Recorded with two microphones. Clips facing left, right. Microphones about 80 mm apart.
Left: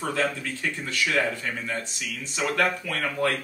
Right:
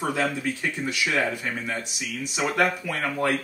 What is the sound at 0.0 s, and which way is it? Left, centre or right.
Speech, centre.